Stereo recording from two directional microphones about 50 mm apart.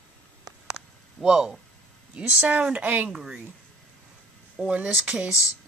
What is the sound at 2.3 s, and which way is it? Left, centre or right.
Speech, right.